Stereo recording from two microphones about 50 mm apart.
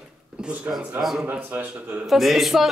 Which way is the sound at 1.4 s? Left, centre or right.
Right.